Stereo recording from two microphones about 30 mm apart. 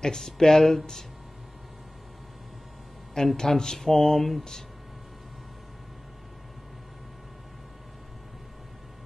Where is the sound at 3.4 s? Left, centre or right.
Centre.